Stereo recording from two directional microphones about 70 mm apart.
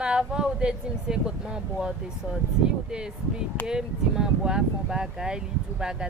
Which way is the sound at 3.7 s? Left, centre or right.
Centre.